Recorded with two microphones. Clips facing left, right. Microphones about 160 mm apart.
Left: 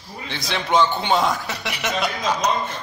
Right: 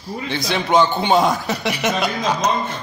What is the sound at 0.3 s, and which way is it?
Speech, 10° right (ahead or behind).